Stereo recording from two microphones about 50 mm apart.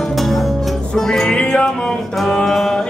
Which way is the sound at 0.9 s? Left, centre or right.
Centre.